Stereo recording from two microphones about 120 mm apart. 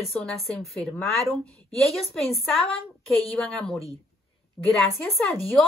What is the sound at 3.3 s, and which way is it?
A woman's voice, 10° left (ahead or behind).